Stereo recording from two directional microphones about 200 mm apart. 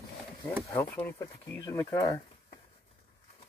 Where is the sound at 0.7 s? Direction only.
15° left (ahead or behind).